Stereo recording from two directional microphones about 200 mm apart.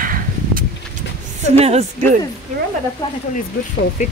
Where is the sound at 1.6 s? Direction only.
30° right (ahead or behind).